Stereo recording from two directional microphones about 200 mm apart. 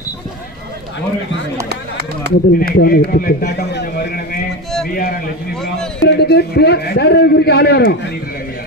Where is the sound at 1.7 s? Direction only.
55° right (ahead or behind).